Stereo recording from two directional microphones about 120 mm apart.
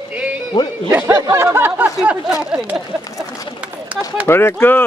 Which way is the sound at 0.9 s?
25° right (ahead or behind).